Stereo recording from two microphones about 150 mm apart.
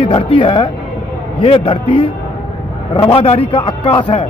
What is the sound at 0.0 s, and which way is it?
A man's voice, 35° left (ahead or behind).